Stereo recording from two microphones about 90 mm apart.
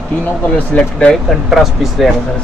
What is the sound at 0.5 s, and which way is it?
Speech, 15° left (ahead or behind).